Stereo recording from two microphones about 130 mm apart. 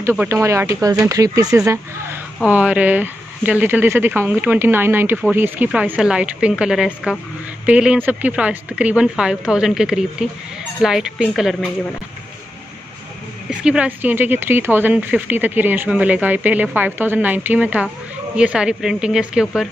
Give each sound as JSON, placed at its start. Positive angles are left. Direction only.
{"t": 0.0, "sound": "speech", "side_deg": -15}
{"t": 2.4, "sound": "speech", "side_deg": -10}
{"t": 13.5, "sound": "speech", "side_deg": -10}